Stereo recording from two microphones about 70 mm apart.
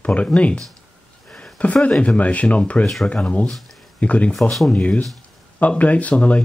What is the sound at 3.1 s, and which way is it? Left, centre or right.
Speech, centre.